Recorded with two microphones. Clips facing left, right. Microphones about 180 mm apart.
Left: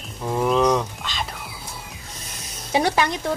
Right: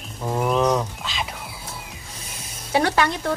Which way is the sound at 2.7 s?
15° left (ahead or behind).